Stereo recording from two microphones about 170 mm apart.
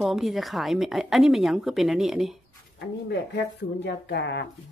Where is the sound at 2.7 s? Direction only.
80° left.